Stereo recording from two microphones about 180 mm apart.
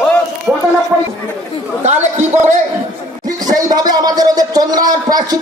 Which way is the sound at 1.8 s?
40° right (ahead or behind).